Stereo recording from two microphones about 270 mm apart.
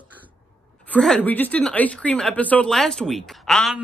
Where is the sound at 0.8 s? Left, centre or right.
Centre.